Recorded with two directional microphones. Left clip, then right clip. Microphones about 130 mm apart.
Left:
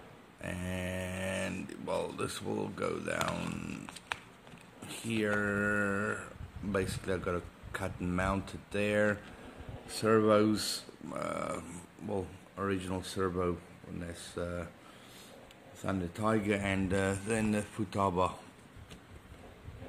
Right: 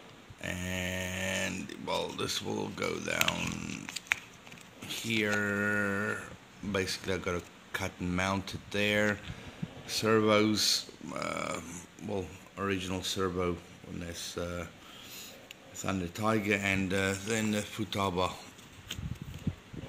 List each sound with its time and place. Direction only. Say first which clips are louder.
0.6 s a sound: right 3 dB; 5° right (ahead or behind)
2.5 s speech: right 1 dB; 5° right (ahead or behind)
15.8 s speech: right 1 dB; 10° right (ahead or behind)
17.3 s speech: right 1 dB; 15° left (ahead or behind)